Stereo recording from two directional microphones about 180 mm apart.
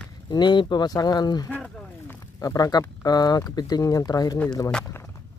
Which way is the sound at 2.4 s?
20° left (ahead or behind).